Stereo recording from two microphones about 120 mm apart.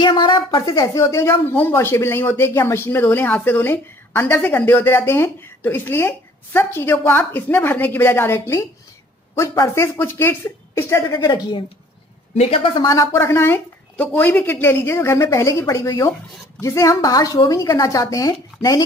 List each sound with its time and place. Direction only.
0.0 s speech: 40° left (ahead or behind)
12.4 s a woman's voice: 55° left (ahead or behind)
12.7 s speech: 30° left (ahead or behind)